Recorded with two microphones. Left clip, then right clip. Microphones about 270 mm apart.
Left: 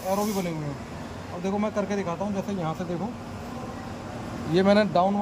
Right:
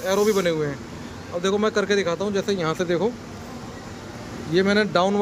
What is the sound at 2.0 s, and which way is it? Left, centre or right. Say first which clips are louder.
Speech: right 7 dB; right.